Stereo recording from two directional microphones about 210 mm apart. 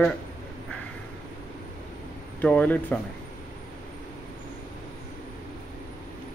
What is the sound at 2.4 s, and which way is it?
Speech, 5° left (ahead or behind).